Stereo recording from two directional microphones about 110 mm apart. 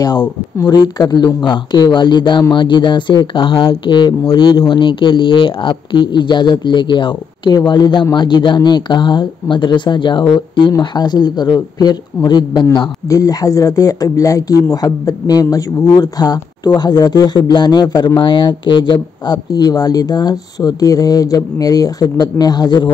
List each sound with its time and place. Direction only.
0.6 s speech: 35° left (ahead or behind)